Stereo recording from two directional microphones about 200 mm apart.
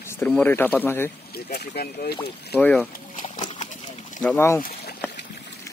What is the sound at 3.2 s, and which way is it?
Horse, 35° left (ahead or behind).